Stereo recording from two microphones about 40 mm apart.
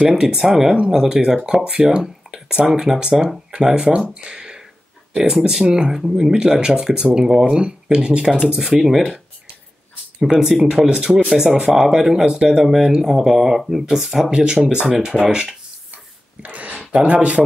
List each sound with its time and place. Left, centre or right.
0.2 s speech: centre
1.7 s speech: right
2.4 s speech: centre
4.1 s a sound: right
5.1 s speech: centre
8.8 s speech: centre
10.3 s speech: centre
13.1 s speech: centre
16.4 s a sound: right
16.9 s speech: right